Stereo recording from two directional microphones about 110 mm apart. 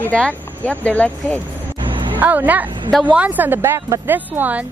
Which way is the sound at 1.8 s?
50° right (ahead or behind).